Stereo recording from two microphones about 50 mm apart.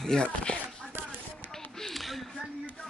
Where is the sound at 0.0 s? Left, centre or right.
Centre.